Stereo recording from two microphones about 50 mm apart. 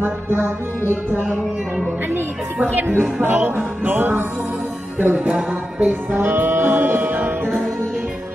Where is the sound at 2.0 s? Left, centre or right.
Right.